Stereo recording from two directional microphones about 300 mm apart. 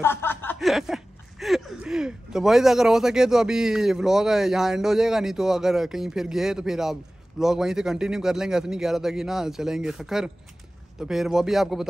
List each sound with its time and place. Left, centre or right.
0.0 s speech: centre